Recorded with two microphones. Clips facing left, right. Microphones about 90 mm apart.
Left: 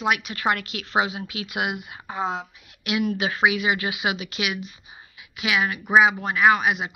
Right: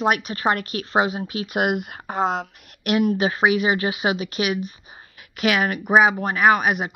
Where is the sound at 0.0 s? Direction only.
40° right (ahead or behind).